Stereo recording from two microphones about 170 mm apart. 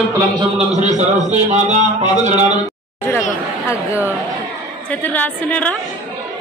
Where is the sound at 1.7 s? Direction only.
45° right (ahead or behind).